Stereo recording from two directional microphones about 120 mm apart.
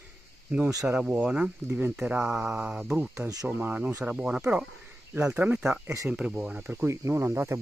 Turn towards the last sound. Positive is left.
turn(degrees=-20)  # may be behind; listen again after turning